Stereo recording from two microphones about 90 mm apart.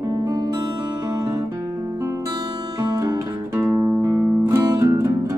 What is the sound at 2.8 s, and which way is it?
Music, 40° right (ahead or behind).